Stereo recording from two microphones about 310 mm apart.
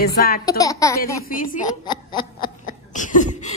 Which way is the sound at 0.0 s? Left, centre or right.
Left.